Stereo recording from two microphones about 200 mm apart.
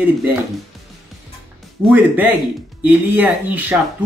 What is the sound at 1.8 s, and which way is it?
Speech, 10° right (ahead or behind).